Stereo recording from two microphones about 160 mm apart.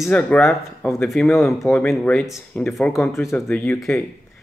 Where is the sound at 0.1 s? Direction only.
5° left (ahead or behind).